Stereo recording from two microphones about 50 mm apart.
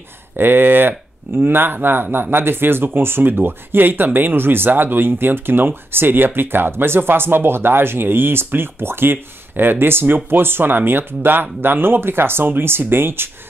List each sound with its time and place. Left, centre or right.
0.4 s speech: right